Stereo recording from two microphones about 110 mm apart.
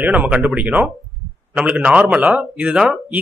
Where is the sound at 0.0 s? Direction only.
15° right (ahead or behind).